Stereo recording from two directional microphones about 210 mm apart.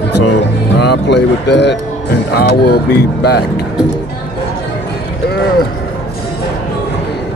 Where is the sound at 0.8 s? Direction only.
55° left (ahead or behind).